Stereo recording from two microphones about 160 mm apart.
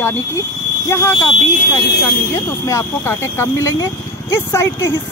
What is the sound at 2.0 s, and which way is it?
Speech, 20° left (ahead or behind).